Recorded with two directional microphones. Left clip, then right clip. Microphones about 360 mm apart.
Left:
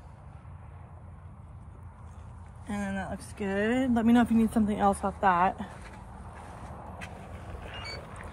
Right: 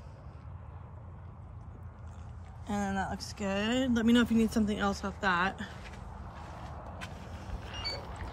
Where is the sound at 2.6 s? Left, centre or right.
Centre.